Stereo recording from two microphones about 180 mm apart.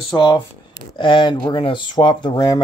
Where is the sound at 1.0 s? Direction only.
25° left (ahead or behind).